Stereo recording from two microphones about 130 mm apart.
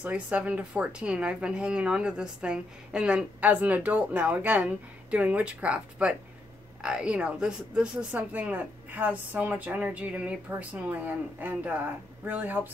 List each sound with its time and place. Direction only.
0.0 s speech: 10° right (ahead or behind)